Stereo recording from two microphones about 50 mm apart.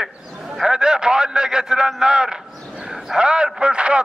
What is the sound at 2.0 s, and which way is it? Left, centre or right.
A man's voice, centre.